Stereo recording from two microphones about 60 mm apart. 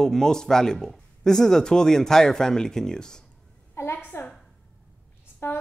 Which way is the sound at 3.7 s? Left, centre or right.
Left.